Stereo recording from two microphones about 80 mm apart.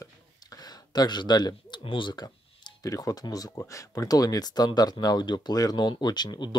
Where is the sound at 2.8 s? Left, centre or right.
Left.